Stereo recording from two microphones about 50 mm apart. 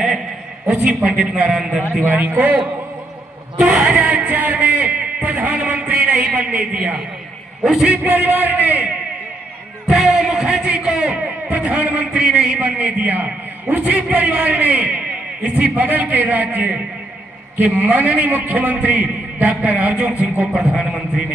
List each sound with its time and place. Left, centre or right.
0.7 s a man's voice: right
1.3 s a man's voice: centre
1.8 s a man's voice: right
3.7 s a man's voice: right
7.9 s a man's voice: right
9.8 s music: centre
10.2 s a sound: centre
10.5 s a man's voice: right
12.2 s a man's voice: centre
12.5 s a man's voice: right
20.7 s a man's voice: centre